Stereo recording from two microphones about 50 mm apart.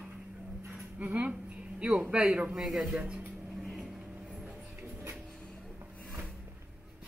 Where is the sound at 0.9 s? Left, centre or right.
Right.